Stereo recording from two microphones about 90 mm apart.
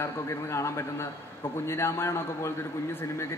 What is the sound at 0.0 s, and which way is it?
A man's voice, 30° left (ahead or behind).